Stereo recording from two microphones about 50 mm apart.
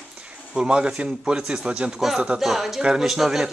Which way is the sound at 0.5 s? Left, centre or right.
Centre.